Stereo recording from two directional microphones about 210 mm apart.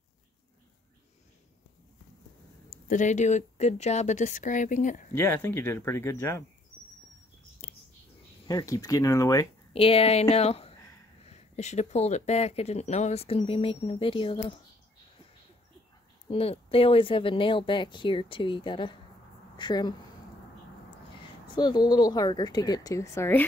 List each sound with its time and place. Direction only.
2.9 s speech: 35° left (ahead or behind)
5.1 s speech: 10° left (ahead or behind)
7.6 s whispering: 35° left (ahead or behind)
8.5 s speech: 15° left (ahead or behind)
9.7 s speech: 25° left (ahead or behind)
16.3 s speech: 25° left (ahead or behind)
21.5 s speech: 20° left (ahead or behind)